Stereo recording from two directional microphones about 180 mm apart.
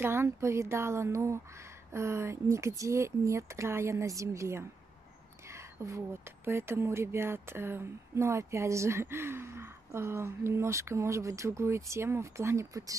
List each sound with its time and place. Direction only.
0.0 s speech: 15° right (ahead or behind)